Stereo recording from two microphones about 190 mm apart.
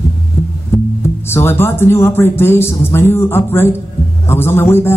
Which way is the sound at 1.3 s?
10° left (ahead or behind).